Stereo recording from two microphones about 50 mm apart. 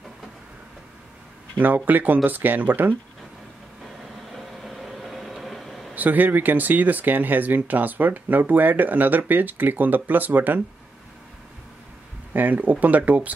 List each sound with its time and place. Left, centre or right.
1.6 s speech: right
4.3 s a sound: centre
5.9 s speech: right
12.4 s speech: right